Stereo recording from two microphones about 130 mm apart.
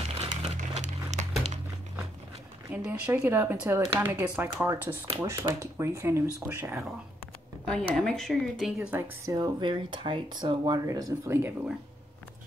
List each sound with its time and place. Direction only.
0.4 s crumpling: 65° right (ahead or behind)
2.7 s speech: 15° right (ahead or behind)
7.6 s speech: 5° left (ahead or behind)
8.9 s speech: 20° right (ahead or behind)
9.4 s speech: 40° right (ahead or behind); by 11.7 s 15° right (ahead or behind)